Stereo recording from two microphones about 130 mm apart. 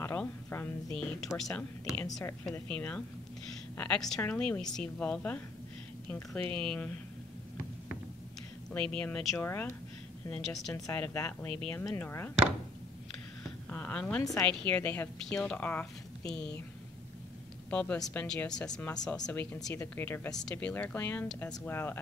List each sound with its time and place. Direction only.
0.0 s a woman's voice: 15° left (ahead or behind)
1.4 s a woman's voice: 5° left (ahead or behind)
8.7 s a woman's voice: 10° left (ahead or behind)
9.4 s a woman's voice: 20° left (ahead or behind)
10.3 s speech: centre (ahead or behind)
10.7 s a woman's voice: 20° left (ahead or behind)
13.7 s a woman's voice: 10° left (ahead or behind)
17.6 s a woman's voice: 10° left (ahead or behind)
20.2 s a woman's voice: 5° left (ahead or behind)